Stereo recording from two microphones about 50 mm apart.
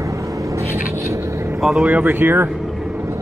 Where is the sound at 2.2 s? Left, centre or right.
Right.